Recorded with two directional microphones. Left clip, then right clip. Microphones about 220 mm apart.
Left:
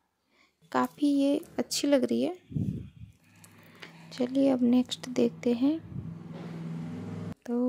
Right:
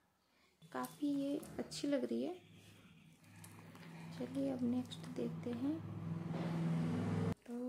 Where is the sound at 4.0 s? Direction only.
40° left (ahead or behind).